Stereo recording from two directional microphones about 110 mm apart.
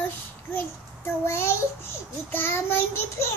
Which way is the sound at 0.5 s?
20° left (ahead or behind).